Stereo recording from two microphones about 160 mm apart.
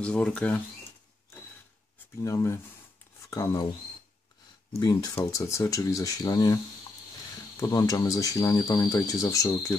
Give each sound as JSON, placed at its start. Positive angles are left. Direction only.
{"t": 0.0, "sound": "speech", "side_deg": 5}
{"t": 2.2, "sound": "speech", "side_deg": 20}
{"t": 4.7, "sound": "speech", "side_deg": 25}